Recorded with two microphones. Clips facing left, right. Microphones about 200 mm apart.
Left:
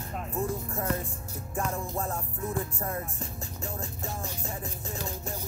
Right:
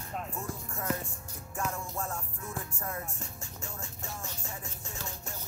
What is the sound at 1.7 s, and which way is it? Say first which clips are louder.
Music: left 4 dB; 35° left (ahead or behind).